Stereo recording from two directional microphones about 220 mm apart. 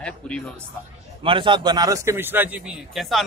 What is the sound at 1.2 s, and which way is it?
A man's voice, 20° right (ahead or behind).